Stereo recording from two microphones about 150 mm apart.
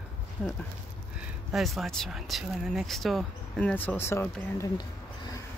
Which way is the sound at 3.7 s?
10° left (ahead or behind).